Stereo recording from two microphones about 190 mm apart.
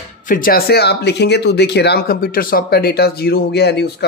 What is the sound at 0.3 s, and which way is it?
Speech, 50° left (ahead or behind).